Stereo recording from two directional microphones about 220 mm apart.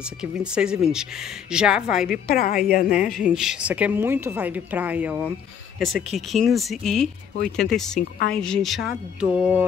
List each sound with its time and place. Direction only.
0.0 s speech: 5° right (ahead or behind)
2.2 s a woman's voice: 40° left (ahead or behind)
3.1 s speech: centre (ahead or behind)